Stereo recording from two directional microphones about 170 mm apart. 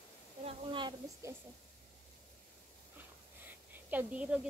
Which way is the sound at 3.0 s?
10° right (ahead or behind).